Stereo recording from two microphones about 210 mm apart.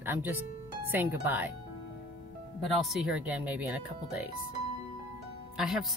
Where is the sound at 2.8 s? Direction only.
Centre (ahead or behind).